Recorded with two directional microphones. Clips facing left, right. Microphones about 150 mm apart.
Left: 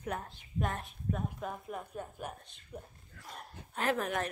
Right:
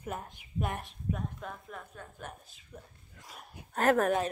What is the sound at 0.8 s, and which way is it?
A woman's voice, 5° left (ahead or behind).